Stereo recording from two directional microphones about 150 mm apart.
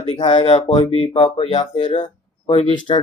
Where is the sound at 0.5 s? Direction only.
40° left (ahead or behind).